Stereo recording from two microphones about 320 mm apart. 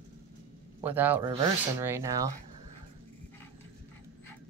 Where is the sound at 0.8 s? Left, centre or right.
Centre.